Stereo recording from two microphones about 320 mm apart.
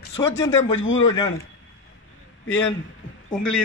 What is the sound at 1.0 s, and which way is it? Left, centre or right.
Speech, centre.